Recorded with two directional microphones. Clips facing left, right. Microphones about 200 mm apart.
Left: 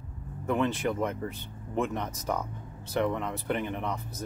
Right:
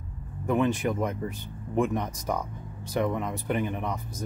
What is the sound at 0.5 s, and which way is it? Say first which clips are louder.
Speech: right 3 dB; 15° right (ahead or behind).